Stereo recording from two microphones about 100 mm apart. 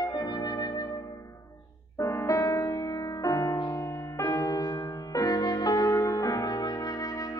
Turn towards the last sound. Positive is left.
turn(degrees=40)  # may be behind; listen again after turning